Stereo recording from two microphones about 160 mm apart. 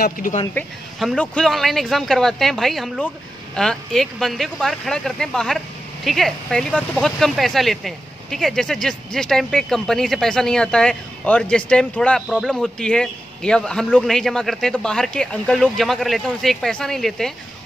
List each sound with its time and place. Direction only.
0.0 s speech: 60° left (ahead or behind)
0.9 s speech: centre (ahead or behind)